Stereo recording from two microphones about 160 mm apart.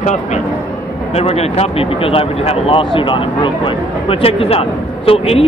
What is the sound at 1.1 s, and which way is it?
Speech, 40° left (ahead or behind).